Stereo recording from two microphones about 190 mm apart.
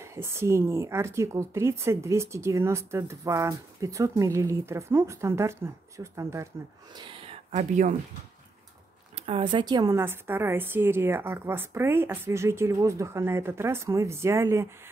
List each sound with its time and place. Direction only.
0.0 s a woman's voice: 15° right (ahead or behind)
7.0 s a sound: 25° right (ahead or behind)
9.1 s a woman's voice: 30° right (ahead or behind); by 14.7 s 15° right (ahead or behind)